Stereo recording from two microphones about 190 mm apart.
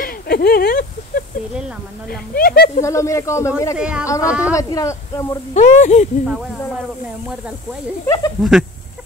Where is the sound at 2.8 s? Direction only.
15° left (ahead or behind).